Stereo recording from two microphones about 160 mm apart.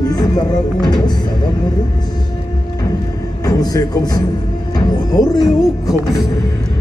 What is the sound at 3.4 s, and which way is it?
Music, 25° left (ahead or behind).